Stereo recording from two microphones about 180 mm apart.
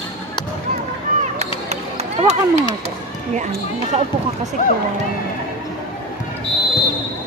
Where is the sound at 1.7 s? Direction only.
40° right (ahead or behind).